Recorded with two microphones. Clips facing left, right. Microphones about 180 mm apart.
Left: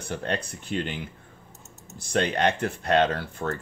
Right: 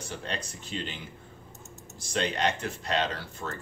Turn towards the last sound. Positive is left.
turn(degrees=55)  # may be behind; listen again after turning